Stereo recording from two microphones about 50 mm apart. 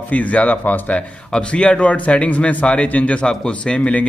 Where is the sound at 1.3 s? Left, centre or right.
Centre.